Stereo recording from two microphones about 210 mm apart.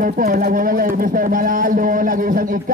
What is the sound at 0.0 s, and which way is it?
A man's voice, 40° right (ahead or behind).